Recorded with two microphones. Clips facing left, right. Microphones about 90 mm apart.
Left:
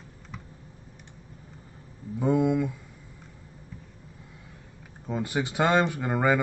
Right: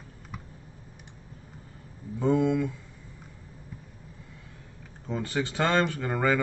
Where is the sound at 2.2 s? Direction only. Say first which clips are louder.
Left 1 dB; 15° left (ahead or behind).